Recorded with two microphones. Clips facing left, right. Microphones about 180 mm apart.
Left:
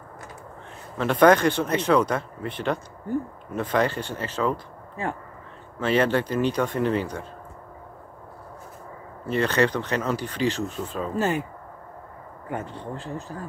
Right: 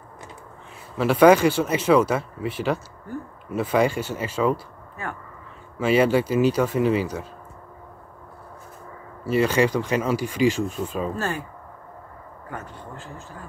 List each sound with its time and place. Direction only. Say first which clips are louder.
0.9 s speech: right 2 dB; 10° right (ahead or behind)
5.8 s speech: right 3 dB; 10° right (ahead or behind)
9.2 s speech: right 2 dB; 10° right (ahead or behind)
11.1 s speech: left 4 dB; 20° left (ahead or behind)
12.4 s speech: left 5 dB; 25° left (ahead or behind)